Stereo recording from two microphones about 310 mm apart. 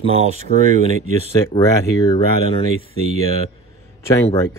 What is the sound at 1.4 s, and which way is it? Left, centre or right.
Speech, centre.